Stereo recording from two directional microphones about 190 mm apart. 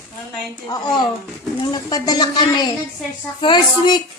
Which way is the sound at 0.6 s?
20° left (ahead or behind).